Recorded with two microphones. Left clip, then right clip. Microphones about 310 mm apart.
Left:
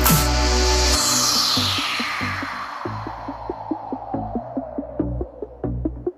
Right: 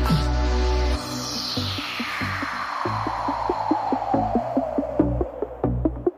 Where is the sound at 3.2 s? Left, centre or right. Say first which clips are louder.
Right 7 dB; right.